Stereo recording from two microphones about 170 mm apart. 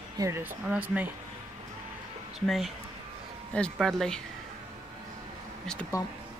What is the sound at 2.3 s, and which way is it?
Speech, centre (ahead or behind).